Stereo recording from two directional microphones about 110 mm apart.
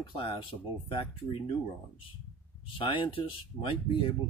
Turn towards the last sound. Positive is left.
turn(degrees=50)  # may be behind; listen again after turning